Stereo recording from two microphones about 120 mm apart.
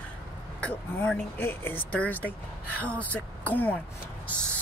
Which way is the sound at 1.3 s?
20° left (ahead or behind).